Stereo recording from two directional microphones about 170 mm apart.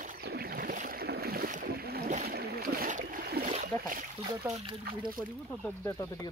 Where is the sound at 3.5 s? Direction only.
45° right (ahead or behind).